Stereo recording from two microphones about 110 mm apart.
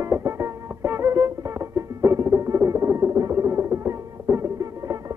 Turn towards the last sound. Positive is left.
turn(degrees=-30)  # may be behind; listen again after turning